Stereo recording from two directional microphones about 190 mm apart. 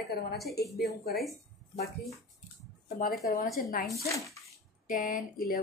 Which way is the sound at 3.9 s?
15° left (ahead or behind).